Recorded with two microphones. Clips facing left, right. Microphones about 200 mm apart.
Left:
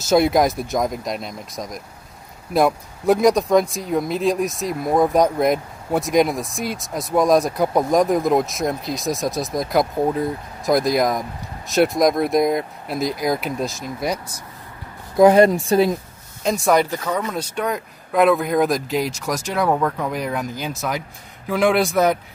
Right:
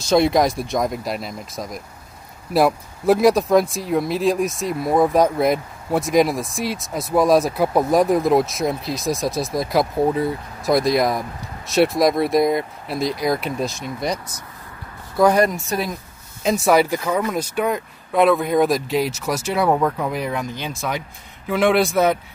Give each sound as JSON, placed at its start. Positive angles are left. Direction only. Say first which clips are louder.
{"t": 0.1, "sound": "speech", "louder": "even", "side_deg": 0}
{"t": 15.1, "sound": "speech", "louder": "left 4 dB", "side_deg": 25}
{"t": 16.4, "sound": "speech", "louder": "right 1 dB", "side_deg": -5}